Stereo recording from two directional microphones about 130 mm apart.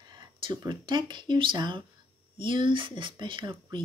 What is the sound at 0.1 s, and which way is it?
Speech, 35° right (ahead or behind).